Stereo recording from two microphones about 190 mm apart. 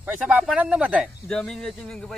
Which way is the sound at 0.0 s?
10° right (ahead or behind).